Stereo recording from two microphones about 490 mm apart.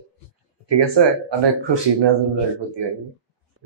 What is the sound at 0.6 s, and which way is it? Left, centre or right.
Speech, right.